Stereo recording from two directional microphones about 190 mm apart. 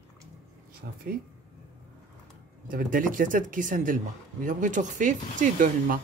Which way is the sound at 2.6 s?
45° right (ahead or behind).